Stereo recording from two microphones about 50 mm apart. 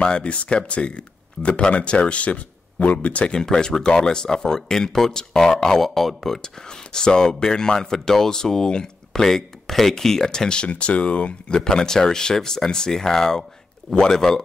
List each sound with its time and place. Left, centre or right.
0.0 s speech: left
3.3 s speech: centre